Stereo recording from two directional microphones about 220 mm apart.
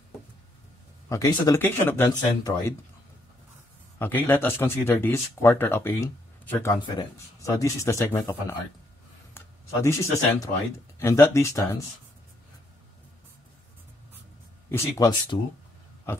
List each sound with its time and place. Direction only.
1.0 s speech: 15° left (ahead or behind)
4.0 s speech: 10° left (ahead or behind)
14.7 s speech: 15° left (ahead or behind)